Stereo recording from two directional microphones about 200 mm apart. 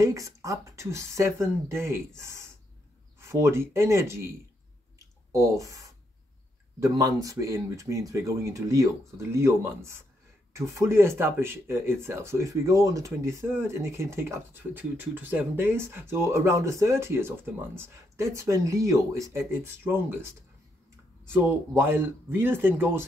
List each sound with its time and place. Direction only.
0.0 s speech: 15° right (ahead or behind)
4.9 s a sound: 15° right (ahead or behind)
6.8 s speech: 15° right (ahead or behind)
21.3 s speech: 10° right (ahead or behind)